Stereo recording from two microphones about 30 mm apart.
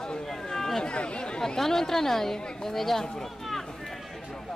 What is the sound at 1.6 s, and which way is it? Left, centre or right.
A woman's voice, centre.